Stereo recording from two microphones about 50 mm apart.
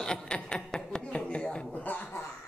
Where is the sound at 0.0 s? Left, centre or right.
Centre.